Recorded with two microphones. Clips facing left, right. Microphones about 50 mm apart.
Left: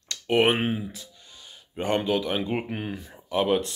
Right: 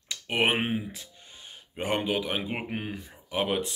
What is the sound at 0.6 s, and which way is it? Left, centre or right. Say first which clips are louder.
Speech: left 2 dB; centre.